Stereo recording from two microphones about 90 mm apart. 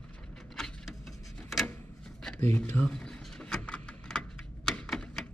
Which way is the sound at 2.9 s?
10° left (ahead or behind).